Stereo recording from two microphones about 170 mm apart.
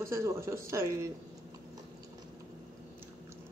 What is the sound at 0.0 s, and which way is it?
Speech, 15° right (ahead or behind).